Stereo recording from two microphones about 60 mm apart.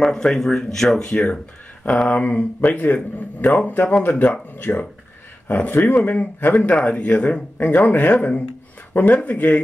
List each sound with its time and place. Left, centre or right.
0.0 s speech: centre
2.0 s speech: left
6.6 s speech: centre